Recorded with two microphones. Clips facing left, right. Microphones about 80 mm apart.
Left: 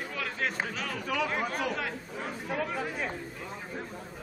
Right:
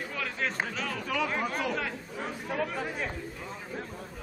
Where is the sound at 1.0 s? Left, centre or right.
Left.